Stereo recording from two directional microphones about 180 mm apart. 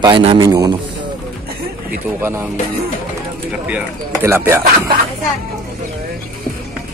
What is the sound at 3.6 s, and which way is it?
Speech, 10° right (ahead or behind).